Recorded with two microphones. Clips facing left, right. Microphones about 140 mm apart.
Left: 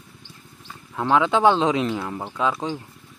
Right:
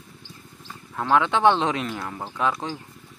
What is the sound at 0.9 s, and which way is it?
Speech, 15° left (ahead or behind).